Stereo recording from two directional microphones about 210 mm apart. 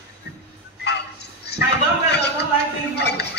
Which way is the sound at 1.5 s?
55° left (ahead or behind).